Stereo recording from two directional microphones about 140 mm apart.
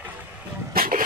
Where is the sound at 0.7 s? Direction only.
90° right.